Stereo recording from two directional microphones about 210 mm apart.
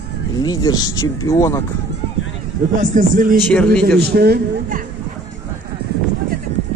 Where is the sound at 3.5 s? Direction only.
5° left (ahead or behind).